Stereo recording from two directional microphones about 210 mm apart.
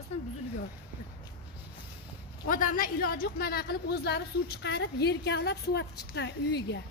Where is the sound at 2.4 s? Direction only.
40° left (ahead or behind).